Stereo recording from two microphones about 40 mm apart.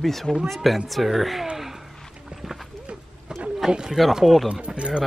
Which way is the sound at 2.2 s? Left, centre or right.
Centre.